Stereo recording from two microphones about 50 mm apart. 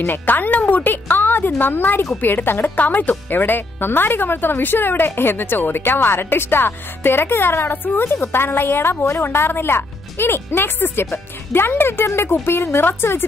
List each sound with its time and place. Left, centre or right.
0.0 s speech: left